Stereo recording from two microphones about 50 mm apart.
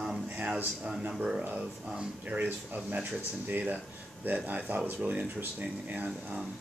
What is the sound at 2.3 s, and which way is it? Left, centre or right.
Speech, right.